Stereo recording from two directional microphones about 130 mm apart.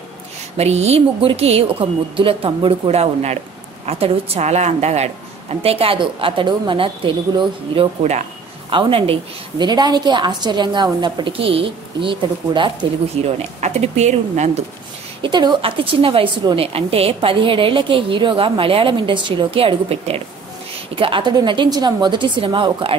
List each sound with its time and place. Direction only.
0.6 s a woman's voice: 55° right (ahead or behind)
8.0 s a woman's voice: 60° right (ahead or behind)
8.6 s a woman's voice: 45° right (ahead or behind)
9.6 s a woman's voice: 35° right (ahead or behind)
13.2 s a woman's voice: 50° right (ahead or behind)
15.2 s a woman's voice: 35° right (ahead or behind)